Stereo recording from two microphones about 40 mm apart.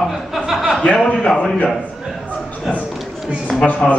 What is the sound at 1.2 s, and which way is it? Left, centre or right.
Speech, left.